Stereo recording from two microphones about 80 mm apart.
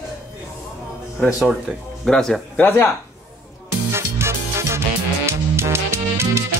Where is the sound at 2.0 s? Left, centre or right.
Centre.